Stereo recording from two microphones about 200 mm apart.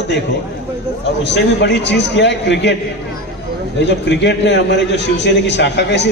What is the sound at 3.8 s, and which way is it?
A man's voice, 60° left (ahead or behind).